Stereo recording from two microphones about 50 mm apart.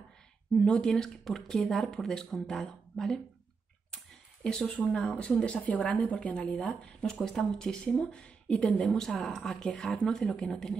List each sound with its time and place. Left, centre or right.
0.6 s speech: centre
3.9 s a sound: centre
4.8 s speech: left
5.4 s speech: left
6.8 s speech: centre
8.8 s speech: centre
10.0 s speech: centre